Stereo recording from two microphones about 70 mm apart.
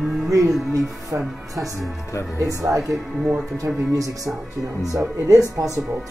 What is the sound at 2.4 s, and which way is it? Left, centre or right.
Speech, right.